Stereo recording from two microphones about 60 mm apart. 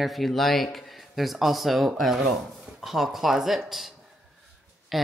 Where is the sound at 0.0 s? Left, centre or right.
Centre.